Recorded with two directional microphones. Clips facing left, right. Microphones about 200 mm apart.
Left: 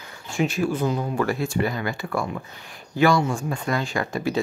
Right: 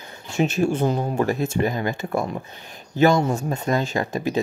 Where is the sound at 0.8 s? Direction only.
40° right (ahead or behind).